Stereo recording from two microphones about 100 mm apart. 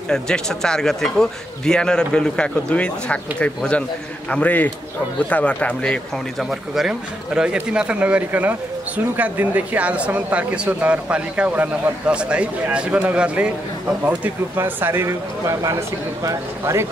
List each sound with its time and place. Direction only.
0.1 s speech: 5° left (ahead or behind)
6.7 s speech: 5° right (ahead or behind); by 16.8 s 30° right (ahead or behind)